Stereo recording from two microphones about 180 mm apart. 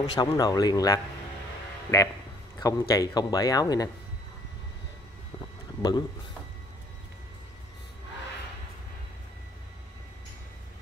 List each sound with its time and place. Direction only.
0.0 s a man's voice: 20° left (ahead or behind)
2.6 s a man's voice: 20° left (ahead or behind)
5.8 s speech: 25° left (ahead or behind)